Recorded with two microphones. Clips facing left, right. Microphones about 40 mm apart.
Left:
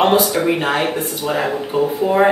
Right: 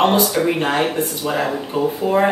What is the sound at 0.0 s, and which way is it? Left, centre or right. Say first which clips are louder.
Speech: left 1 dB; centre.